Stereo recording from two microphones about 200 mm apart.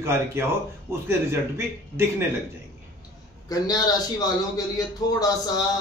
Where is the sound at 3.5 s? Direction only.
20° left (ahead or behind).